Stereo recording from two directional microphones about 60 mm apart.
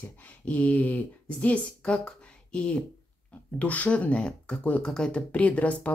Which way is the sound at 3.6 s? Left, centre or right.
Left.